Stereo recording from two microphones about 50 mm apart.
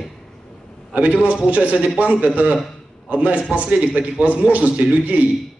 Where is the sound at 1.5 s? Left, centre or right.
Right.